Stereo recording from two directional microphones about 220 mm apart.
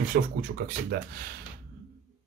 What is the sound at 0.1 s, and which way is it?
Speech, 40° right (ahead or behind).